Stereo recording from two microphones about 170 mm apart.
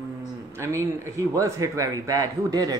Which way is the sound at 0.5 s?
15° right (ahead or behind).